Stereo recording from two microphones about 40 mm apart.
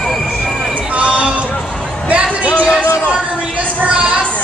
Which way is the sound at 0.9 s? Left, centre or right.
Right.